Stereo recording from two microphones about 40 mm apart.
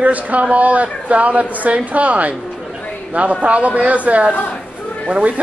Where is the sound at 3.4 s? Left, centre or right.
Right.